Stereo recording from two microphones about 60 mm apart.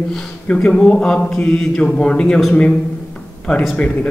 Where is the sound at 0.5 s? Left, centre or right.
Centre.